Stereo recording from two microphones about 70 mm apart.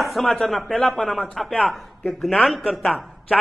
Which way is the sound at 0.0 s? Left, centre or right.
Centre.